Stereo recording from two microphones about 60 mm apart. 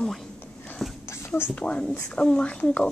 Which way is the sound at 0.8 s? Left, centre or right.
Centre.